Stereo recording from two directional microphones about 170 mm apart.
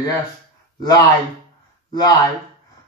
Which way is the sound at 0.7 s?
25° left (ahead or behind).